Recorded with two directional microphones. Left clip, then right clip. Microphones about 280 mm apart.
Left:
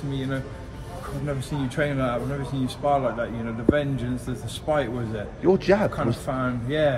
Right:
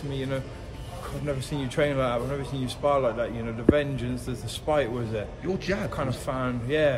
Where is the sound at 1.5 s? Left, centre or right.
Right.